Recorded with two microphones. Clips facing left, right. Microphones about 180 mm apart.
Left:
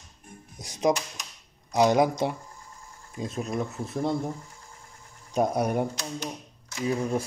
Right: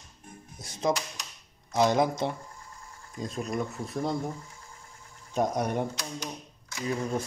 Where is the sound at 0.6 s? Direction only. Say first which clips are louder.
Left 4 dB; 15° left (ahead or behind).